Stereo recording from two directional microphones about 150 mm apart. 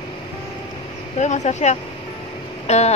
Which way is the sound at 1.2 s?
50° left (ahead or behind).